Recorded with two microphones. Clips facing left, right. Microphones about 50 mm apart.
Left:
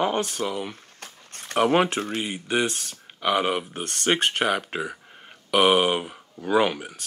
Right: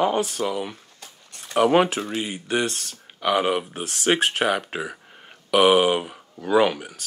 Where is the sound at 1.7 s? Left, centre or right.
Centre.